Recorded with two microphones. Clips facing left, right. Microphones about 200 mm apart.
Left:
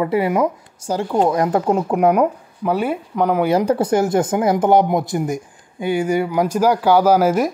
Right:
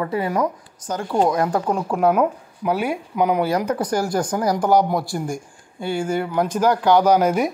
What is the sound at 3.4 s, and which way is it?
Speech, 25° left (ahead or behind).